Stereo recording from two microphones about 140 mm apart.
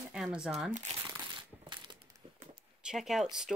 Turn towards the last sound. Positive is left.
turn(degrees=-5)  # may be behind; listen again after turning